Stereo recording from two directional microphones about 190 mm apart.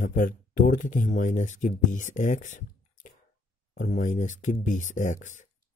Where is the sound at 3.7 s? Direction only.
40° left (ahead or behind).